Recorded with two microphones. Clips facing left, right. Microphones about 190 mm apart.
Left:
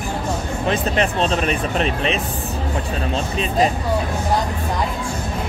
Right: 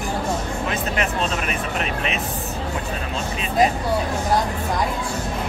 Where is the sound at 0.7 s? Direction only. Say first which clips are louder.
Left 6 dB; 30° left (ahead or behind).